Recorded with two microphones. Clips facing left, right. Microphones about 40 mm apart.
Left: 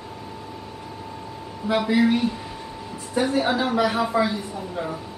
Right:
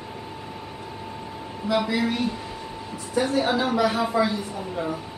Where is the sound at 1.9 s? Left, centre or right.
Centre.